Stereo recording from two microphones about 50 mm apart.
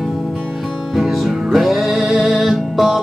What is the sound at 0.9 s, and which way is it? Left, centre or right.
Music, centre.